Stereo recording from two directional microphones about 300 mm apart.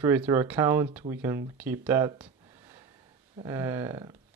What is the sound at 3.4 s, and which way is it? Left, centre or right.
Speech, centre.